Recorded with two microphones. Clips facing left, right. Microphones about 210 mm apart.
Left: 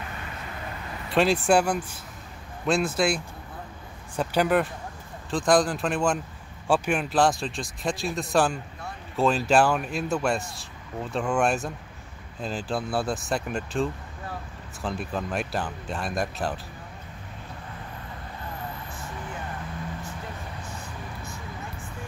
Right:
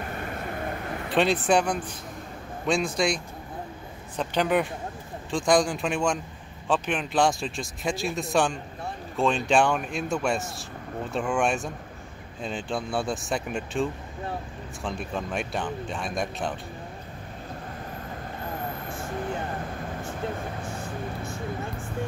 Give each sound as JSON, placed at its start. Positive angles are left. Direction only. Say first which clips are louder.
{"t": 0.1, "sound": "vehicle", "louder": "right 6 dB", "side_deg": -45}
{"t": 1.1, "sound": "speech", "louder": "left 1 dB", "side_deg": 0}
{"t": 4.2, "sound": "speech", "louder": "left 1 dB", "side_deg": 10}